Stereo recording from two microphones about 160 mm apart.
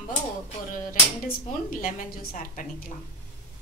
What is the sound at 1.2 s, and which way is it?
A woman's voice, 65° left (ahead or behind).